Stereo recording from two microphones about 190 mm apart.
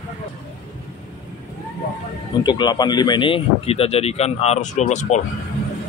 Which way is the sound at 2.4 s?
20° left (ahead or behind).